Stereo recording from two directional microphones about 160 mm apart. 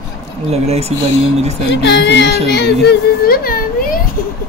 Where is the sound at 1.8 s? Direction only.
90° left; by 4.0 s 65° left (ahead or behind).